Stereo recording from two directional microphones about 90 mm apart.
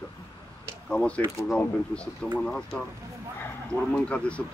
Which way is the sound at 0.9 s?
10° left (ahead or behind).